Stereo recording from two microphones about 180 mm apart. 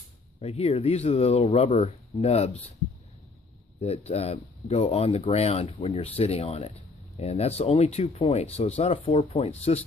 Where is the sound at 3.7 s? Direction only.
35° left (ahead or behind).